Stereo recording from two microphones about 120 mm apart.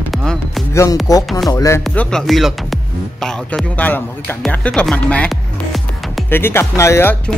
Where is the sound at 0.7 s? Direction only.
25° left (ahead or behind).